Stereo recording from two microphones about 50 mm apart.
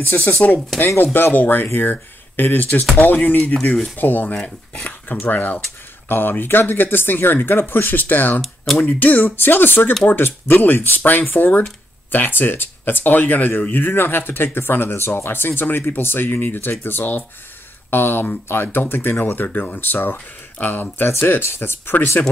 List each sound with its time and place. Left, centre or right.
0.0 s speech: left
4.3 s speech: centre
5.2 s speech: left
21.1 s speech: left